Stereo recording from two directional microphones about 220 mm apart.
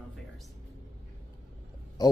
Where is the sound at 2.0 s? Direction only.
15° left (ahead or behind).